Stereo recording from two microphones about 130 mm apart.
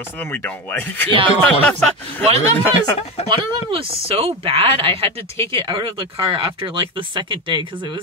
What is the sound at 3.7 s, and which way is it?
Speech, 45° right (ahead or behind).